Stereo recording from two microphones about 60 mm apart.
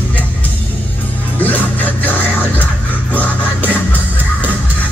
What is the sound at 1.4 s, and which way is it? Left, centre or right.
Music, left.